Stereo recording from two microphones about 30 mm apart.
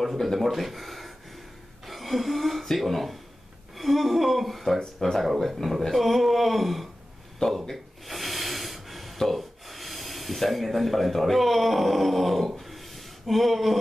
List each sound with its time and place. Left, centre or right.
0.2 s speech: centre
4.7 s speech: centre
5.6 s speech: centre
7.4 s speech: centre
7.7 s snort: centre
9.3 s speech: centre
12.5 s a sound: centre